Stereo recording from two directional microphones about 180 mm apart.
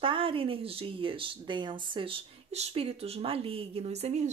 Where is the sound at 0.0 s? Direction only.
30° right (ahead or behind).